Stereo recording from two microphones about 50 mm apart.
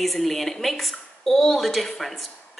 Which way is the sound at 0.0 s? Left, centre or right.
Centre.